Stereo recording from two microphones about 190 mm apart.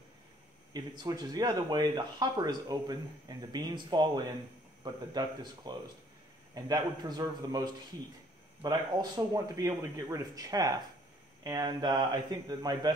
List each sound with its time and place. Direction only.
0.7 s speech: 20° right (ahead or behind)